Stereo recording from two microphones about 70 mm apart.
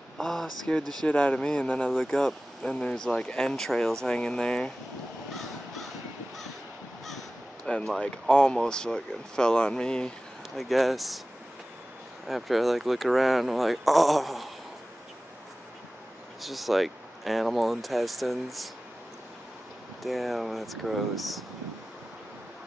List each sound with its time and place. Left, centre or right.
0.2 s speech: centre
1.0 s speech: centre
1.9 s speech: centre
7.6 s speech: centre
10.5 s speech: centre
12.3 s speech: centre
16.3 s speech: centre
20.0 s speech: centre